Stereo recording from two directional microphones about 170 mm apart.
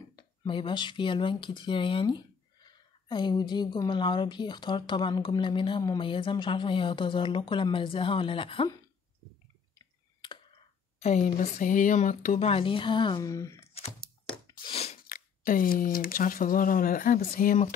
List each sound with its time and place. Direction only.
0.1 s speech: 30° left (ahead or behind)
9.8 s clicking: 25° left (ahead or behind)
11.0 s speech: 45° left (ahead or behind); by 13.5 s 20° left (ahead or behind)
13.6 s a sound: 35° left (ahead or behind)
15.0 s speech: 55° left (ahead or behind)